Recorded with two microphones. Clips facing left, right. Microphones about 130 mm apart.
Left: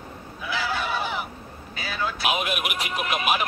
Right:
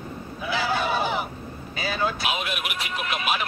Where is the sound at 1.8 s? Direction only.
25° right (ahead or behind).